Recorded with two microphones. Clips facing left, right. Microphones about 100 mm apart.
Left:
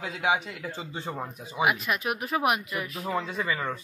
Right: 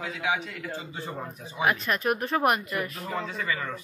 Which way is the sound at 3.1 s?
20° left (ahead or behind).